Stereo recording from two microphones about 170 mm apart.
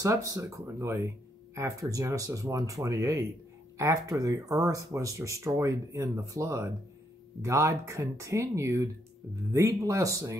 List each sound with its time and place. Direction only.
0.0 s speech: 20° right (ahead or behind)